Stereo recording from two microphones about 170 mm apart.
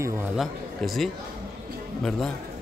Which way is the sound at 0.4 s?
Centre (ahead or behind).